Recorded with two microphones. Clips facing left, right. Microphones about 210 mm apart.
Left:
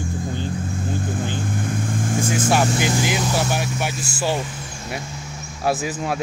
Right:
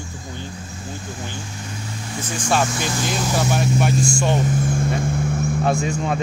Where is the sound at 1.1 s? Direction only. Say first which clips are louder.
Left 7 dB; 55° left (ahead or behind).